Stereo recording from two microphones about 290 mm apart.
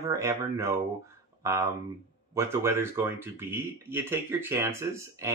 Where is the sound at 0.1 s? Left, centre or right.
Centre.